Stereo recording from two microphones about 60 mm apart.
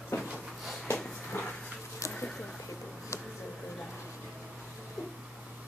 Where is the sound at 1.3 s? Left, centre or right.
Left.